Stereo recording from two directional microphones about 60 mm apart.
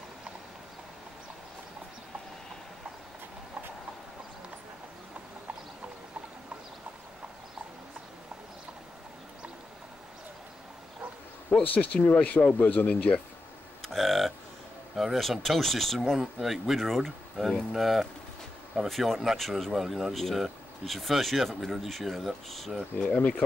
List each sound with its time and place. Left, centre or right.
11.6 s speech: left
13.8 s a sound: centre
15.0 s speech: centre
22.9 s speech: centre